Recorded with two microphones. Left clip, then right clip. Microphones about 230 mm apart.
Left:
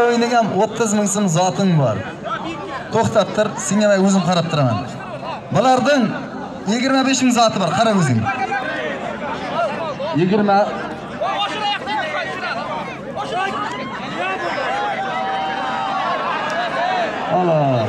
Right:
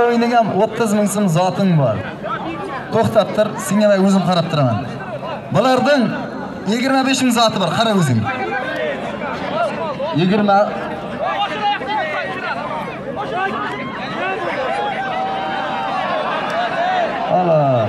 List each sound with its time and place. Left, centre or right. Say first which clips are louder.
0.0 s a man's voice: right 1 dB; centre
5.5 s a man's voice: even; centre
8.2 s chatter: left 1 dB; left
10.1 s a man's voice: right 1 dB; right
11.4 s a sound: right 2 dB; left
17.5 s a man's voice: right 3 dB; right